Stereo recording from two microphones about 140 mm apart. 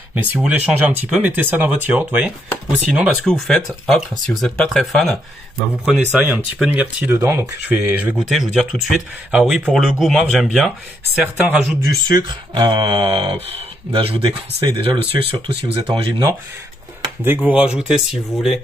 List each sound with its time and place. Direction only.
0.1 s speech: 10° right (ahead or behind)
3.3 s speech: 5° left (ahead or behind)
6.1 s speech: 10° right (ahead or behind)
8.2 s speech: centre (ahead or behind)
11.2 s speech: 15° right (ahead or behind)
12.1 s speech: 30° right (ahead or behind)
17.2 s speech: 10° right (ahead or behind)